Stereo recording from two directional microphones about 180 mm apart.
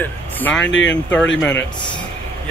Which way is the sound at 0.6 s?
90° left.